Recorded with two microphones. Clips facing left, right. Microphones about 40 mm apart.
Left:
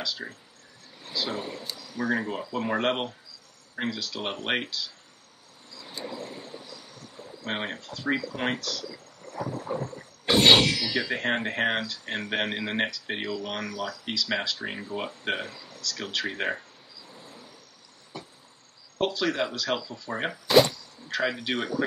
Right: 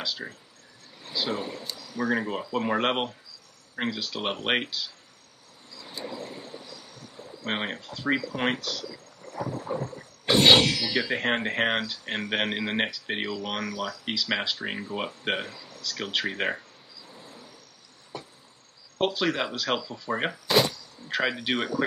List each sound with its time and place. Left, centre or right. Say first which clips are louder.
0.0 s speech: even; centre
5.9 s vehicle: even; centre
7.4 s speech: right 2 dB; centre
9.2 s speech: even; centre
13.3 s speech: right 1 dB; centre
14.0 s speech: right 1 dB; centre
15.4 s speech: even; centre
15.8 s speech: right 2 dB; centre
17.1 s vehicle: even; centre
18.9 s speech: right 1 dB; centre
20.2 s a sound: left 4 dB; centre
21.1 s speech: right 1 dB; centre